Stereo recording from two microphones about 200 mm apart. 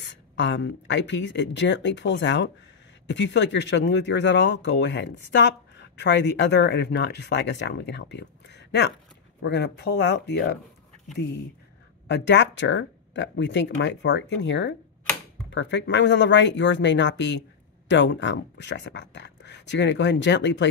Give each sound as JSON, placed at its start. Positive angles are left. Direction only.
{"t": 0.0, "sound": "speech", "side_deg": 60}
{"t": 12.1, "sound": "speech", "side_deg": 60}